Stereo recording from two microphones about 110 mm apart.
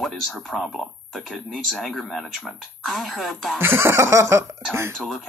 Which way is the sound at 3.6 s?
20° right (ahead or behind).